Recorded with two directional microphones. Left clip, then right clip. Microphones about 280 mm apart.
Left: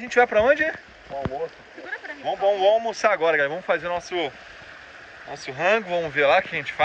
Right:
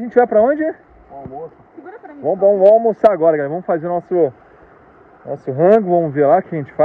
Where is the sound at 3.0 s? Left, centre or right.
Centre.